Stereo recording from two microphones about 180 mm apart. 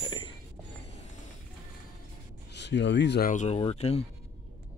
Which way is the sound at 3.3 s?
45° left (ahead or behind).